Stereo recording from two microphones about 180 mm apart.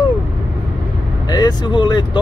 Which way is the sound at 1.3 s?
20° left (ahead or behind).